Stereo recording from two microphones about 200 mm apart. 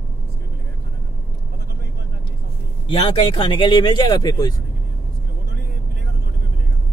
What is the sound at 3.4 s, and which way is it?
Speech, 25° left (ahead or behind).